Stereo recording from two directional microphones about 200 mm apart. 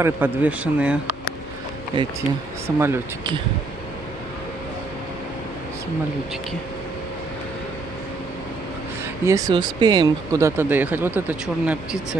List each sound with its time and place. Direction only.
0.0 s speech: 10° right (ahead or behind)
2.0 s speech: 25° right (ahead or behind)
2.6 s speech: 10° right (ahead or behind)
9.2 s speech: 15° right (ahead or behind)